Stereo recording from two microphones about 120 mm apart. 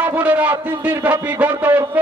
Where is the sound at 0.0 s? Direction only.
15° right (ahead or behind).